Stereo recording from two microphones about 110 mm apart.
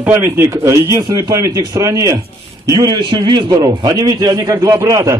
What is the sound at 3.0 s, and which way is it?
A man's voice, 45° right (ahead or behind).